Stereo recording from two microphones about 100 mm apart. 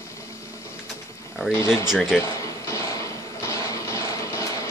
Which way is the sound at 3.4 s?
30° left (ahead or behind).